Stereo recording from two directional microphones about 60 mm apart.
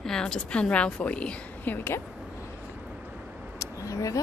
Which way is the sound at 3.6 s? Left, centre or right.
Left.